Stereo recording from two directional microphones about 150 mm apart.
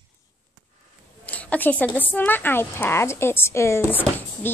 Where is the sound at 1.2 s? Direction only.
10° left (ahead or behind).